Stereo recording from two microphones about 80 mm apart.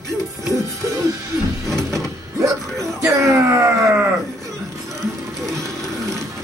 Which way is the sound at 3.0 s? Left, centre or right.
Right.